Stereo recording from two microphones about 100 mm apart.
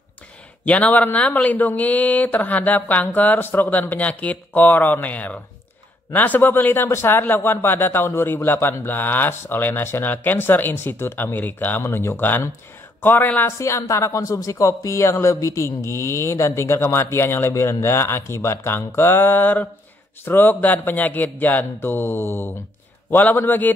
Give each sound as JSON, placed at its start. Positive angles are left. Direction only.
{"t": 0.7, "sound": "a man's voice", "side_deg": 15}